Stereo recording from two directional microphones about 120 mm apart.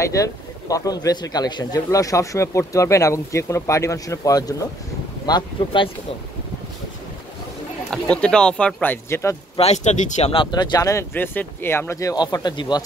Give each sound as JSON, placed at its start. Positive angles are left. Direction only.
{"t": 0.0, "sound": "a man's voice", "side_deg": 25}
{"t": 7.9, "sound": "speech", "side_deg": 5}
{"t": 9.6, "sound": "speech", "side_deg": 70}
{"t": 10.3, "sound": "speech", "side_deg": 40}
{"t": 11.1, "sound": "a man's voice", "side_deg": 15}